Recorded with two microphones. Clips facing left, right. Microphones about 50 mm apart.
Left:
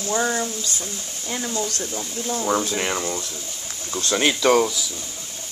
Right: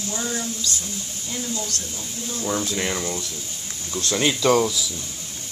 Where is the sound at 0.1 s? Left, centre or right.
Left.